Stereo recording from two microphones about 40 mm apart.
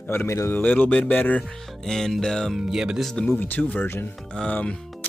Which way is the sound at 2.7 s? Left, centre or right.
Centre.